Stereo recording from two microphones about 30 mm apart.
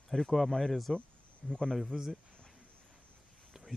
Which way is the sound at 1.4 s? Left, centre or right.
Centre.